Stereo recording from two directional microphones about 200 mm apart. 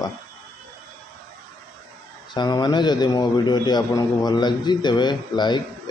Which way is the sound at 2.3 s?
20° left (ahead or behind).